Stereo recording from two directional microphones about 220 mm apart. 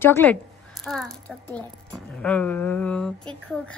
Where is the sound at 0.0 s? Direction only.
10° left (ahead or behind).